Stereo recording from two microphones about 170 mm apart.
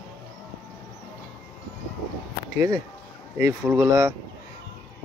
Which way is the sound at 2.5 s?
20° right (ahead or behind).